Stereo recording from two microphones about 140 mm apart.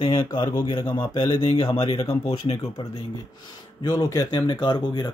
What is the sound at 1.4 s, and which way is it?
Speech, 40° left (ahead or behind).